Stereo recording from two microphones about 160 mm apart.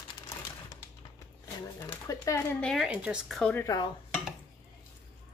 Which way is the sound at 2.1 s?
20° left (ahead or behind).